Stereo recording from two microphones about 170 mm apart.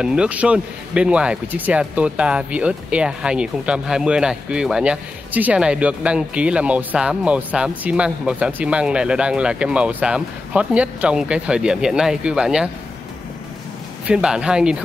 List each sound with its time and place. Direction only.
0.0 s speech: 5° right (ahead or behind)
14.0 s speech: 5° right (ahead or behind)